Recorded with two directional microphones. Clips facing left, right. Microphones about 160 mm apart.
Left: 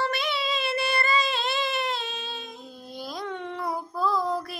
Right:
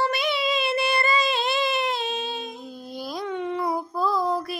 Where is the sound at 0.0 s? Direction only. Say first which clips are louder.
Right 4 dB; 15° right (ahead or behind).